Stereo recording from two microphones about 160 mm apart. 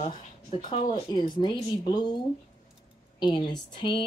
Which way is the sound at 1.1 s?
25° left (ahead or behind).